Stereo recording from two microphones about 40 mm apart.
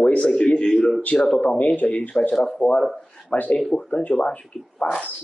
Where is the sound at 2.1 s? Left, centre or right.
Left.